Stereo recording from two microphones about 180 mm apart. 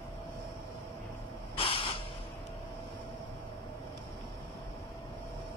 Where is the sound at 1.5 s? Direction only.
30° left (ahead or behind).